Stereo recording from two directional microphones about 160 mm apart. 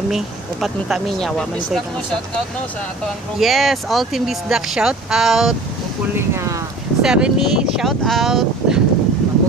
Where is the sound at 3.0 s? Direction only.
Centre (ahead or behind).